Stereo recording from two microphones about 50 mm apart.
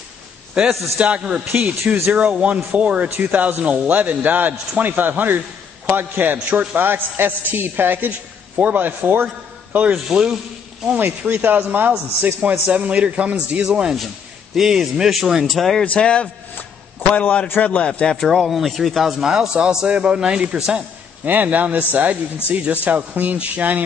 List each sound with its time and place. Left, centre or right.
0.9 s a man's voice: right
6.9 s a man's voice: right
9.7 s speech: right
10.0 s a man's voice: centre
11.0 s a man's voice: right
13.7 s a man's voice: centre
15.5 s speech: centre
15.8 s a man's voice: left
18.1 s a man's voice: centre
21.3 s a man's voice: right